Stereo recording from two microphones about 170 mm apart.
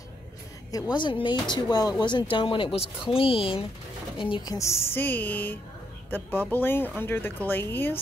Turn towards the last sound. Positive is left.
turn(degrees=10)  # may be behind; listen again after turning